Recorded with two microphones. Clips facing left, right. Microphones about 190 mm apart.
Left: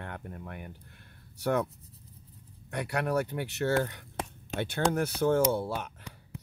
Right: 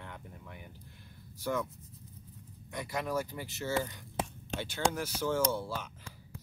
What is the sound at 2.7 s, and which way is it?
Speech, 70° left (ahead or behind).